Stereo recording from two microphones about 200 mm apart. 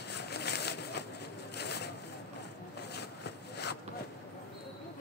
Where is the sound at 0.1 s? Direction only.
55° left (ahead or behind).